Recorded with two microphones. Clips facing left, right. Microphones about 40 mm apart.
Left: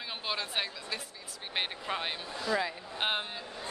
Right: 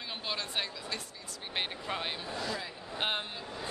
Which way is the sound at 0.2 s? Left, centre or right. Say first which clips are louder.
Left 2 dB; centre.